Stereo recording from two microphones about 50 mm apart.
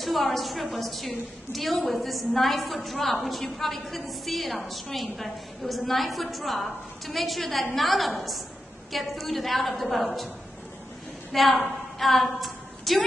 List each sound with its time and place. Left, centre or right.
0.0 s a woman's voice: centre
11.3 s a woman's voice: centre